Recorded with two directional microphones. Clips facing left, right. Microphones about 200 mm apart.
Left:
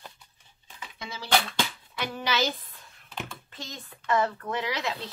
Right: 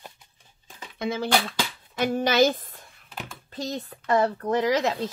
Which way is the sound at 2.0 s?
45° right (ahead or behind).